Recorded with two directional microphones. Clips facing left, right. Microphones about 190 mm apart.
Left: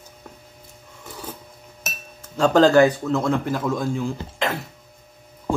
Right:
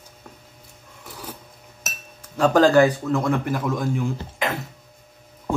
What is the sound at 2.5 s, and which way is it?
A man's voice, 10° right (ahead or behind).